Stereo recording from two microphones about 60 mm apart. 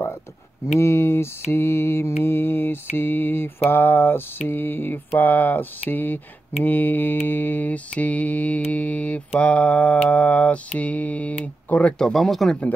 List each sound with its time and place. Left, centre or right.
0.7 s mantra: left
12.0 s speech: centre